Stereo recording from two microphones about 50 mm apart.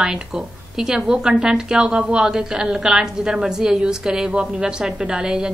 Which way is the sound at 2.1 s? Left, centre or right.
Centre.